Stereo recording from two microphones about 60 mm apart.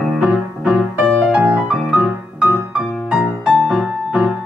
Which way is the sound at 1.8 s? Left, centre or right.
Centre.